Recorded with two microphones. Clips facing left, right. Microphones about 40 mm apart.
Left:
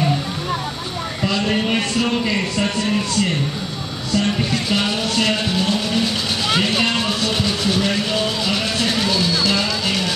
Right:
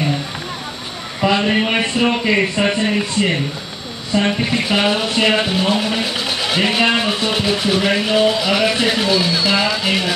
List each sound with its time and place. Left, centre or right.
1.2 s speech: right